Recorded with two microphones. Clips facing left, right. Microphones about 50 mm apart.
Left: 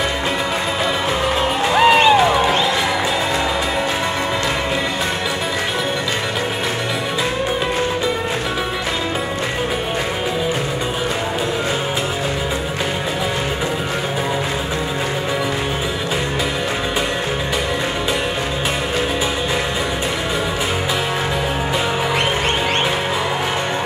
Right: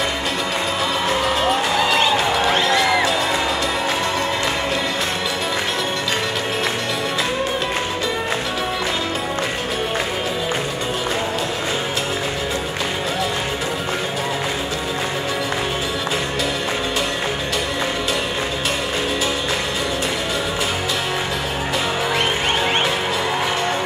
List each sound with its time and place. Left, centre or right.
1.8 s music: left